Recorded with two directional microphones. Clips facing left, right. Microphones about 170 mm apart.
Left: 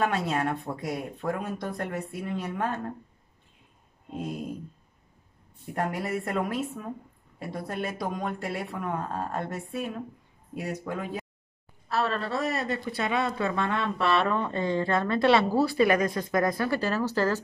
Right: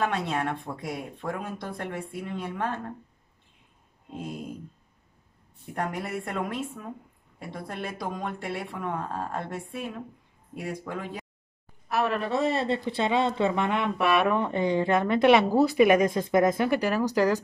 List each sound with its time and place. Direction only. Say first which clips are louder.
0.0 s speech: left 1 dB; centre (ahead or behind)
4.1 s speech: left 2 dB; centre (ahead or behind)
5.8 s speech: left 2 dB; centre (ahead or behind)
11.9 s speech: right 2 dB; 15° right (ahead or behind)